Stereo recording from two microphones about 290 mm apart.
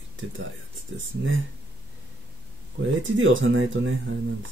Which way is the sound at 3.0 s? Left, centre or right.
Right.